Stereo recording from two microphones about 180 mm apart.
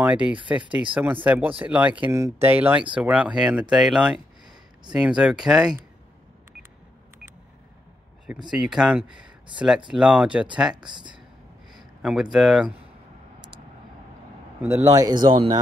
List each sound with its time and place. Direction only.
0.0 s speech: 10° right (ahead or behind)
8.3 s speech: 10° right (ahead or behind)
10.9 s a man's voice: 25° right (ahead or behind)
11.7 s speech: 5° right (ahead or behind)
14.6 s a man's voice: 15° right (ahead or behind)